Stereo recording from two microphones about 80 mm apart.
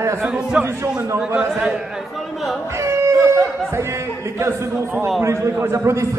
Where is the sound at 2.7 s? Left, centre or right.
Right.